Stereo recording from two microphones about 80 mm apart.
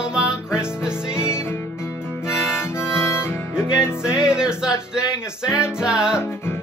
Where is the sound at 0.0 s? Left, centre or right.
Centre.